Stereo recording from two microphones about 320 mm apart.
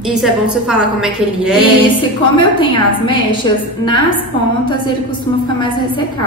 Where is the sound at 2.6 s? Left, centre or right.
Centre.